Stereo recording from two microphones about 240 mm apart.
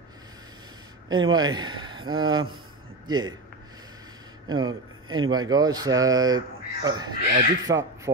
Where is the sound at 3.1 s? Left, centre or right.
Centre.